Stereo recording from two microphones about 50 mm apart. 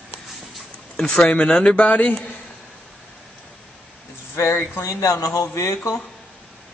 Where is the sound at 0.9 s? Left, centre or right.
Centre.